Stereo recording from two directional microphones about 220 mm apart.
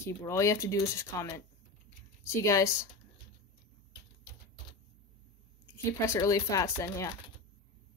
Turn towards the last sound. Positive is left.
turn(degrees=15)  # may be behind; listen again after turning